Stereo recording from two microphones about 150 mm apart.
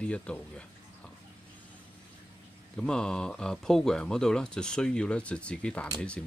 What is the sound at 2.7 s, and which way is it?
Speech, 5° left (ahead or behind).